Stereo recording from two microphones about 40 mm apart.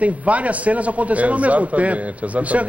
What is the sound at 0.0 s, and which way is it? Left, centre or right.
A man's voice, right.